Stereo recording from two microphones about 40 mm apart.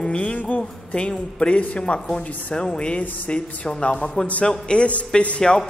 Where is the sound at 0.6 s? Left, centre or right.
Left.